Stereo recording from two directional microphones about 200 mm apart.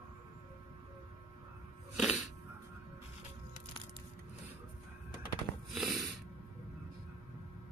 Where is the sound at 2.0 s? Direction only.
Centre (ahead or behind).